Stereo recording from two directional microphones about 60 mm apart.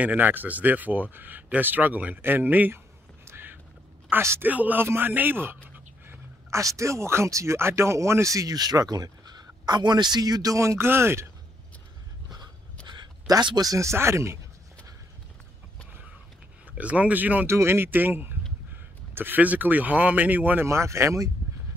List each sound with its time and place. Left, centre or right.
0.0 s speech: right
3.3 s duck: right
4.4 s speech: right
6.6 s speech: right
10.2 s speech: right
10.6 s speech: right
10.9 s speech: right
13.3 s speech: right
13.8 s speech: right
16.7 s speech: right
17.5 s speech: right
20.6 s speech: right